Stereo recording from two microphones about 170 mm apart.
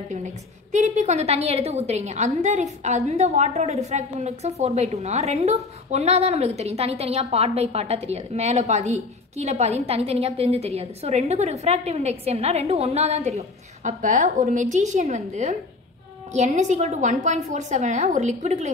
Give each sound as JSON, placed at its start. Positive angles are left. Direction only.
{"t": 0.7, "sound": "a woman's voice", "side_deg": -45}